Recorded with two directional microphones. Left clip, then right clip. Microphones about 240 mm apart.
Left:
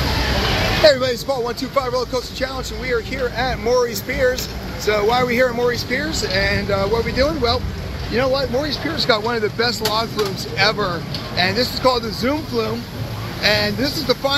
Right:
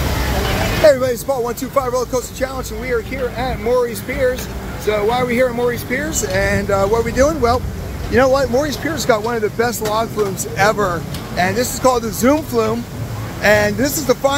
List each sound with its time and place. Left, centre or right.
0.8 s speech: centre
2.9 s speech: centre
8.3 s speech: right
8.9 s speech: centre